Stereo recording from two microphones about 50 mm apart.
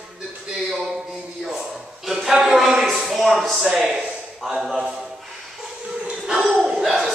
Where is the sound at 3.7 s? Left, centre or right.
Centre.